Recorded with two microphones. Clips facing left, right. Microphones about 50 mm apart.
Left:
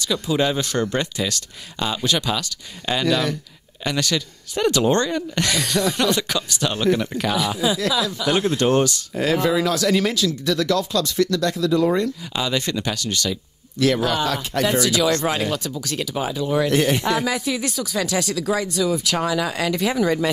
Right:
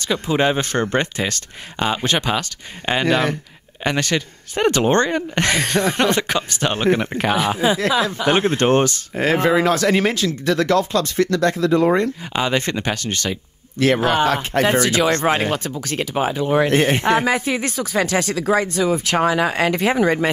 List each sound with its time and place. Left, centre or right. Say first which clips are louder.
0.0 s speech: right 2 dB; right